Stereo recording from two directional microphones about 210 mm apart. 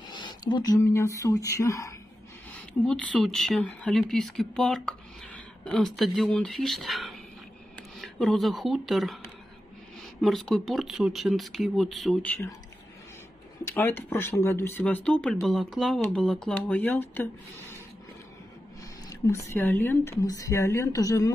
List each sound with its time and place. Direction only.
0.1 s speech: 20° left (ahead or behind); by 9.2 s centre (ahead or behind)
10.2 s speech: centre (ahead or behind)
13.7 s speech: 10° left (ahead or behind)
19.0 s speech: 15° left (ahead or behind)